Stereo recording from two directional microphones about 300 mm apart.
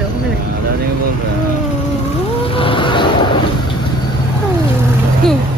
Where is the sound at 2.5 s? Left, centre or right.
Centre.